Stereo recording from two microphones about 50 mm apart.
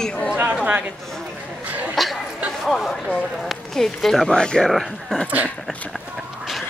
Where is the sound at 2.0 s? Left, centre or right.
Centre.